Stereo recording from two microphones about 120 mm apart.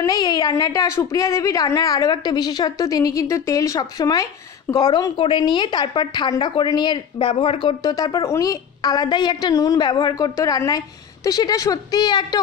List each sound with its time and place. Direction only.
0.0 s a woman's voice: 30° left (ahead or behind)